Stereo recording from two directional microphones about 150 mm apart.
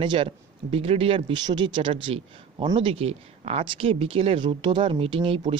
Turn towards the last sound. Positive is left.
turn(degrees=-40)  # may be behind; listen again after turning